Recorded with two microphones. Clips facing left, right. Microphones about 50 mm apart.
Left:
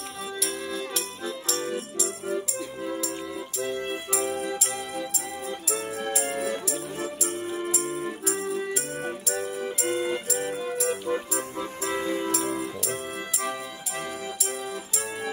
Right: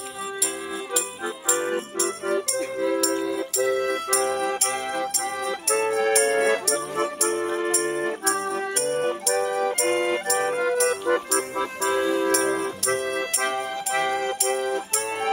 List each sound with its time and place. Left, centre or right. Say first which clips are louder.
1.2 s music: right 4 dB; right
2.9 s music: right 8 dB; right